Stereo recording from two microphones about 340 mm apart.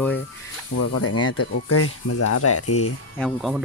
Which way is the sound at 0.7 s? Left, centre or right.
Left.